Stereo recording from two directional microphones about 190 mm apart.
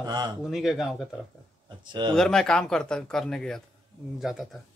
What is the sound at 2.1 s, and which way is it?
Speech, centre (ahead or behind).